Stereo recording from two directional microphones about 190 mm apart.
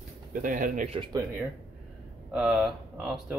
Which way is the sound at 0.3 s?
45° right (ahead or behind).